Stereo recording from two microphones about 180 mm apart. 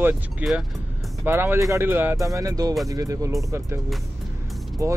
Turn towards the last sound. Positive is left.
turn(degrees=-15)  # may be behind; listen again after turning